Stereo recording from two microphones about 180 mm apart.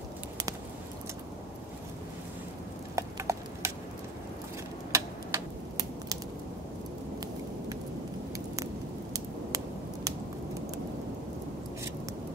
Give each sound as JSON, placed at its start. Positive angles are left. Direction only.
{"t": 3.0, "sound": "clip-clop", "side_deg": -15}
{"t": 4.9, "sound": "tick-tock", "side_deg": -20}